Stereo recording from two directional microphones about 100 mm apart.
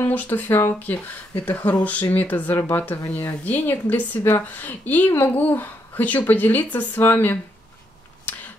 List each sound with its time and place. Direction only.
0.0 s a woman's voice: 15° left (ahead or behind)